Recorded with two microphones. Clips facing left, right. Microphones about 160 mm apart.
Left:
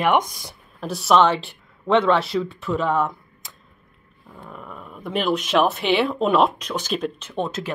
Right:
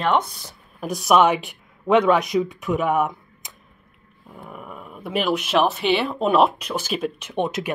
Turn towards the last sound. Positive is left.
turn(degrees=-15)  # may be behind; listen again after turning